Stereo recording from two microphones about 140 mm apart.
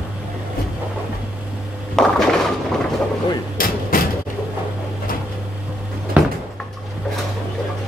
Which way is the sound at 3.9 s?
90° left.